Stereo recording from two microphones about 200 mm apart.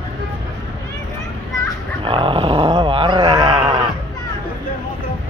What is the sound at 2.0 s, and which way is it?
Dog, 25° right (ahead or behind).